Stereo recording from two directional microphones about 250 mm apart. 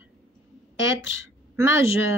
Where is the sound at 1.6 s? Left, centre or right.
Centre.